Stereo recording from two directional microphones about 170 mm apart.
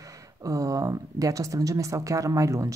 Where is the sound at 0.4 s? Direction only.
20° right (ahead or behind).